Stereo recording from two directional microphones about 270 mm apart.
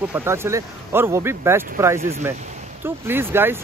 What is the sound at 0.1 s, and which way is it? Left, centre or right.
Speech, centre.